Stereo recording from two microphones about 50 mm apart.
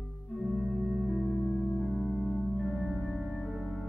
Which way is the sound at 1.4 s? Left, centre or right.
Centre.